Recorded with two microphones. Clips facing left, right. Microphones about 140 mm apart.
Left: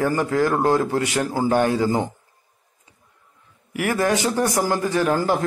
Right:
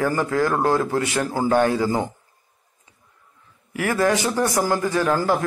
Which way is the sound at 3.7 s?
20° left (ahead or behind).